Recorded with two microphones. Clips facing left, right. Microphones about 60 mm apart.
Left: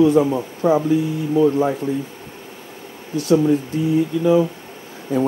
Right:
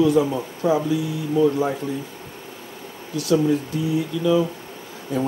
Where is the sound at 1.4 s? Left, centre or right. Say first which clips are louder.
Left 3 dB; left.